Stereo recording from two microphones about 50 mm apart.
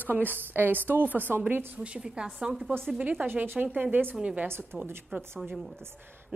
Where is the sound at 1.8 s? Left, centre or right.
Centre.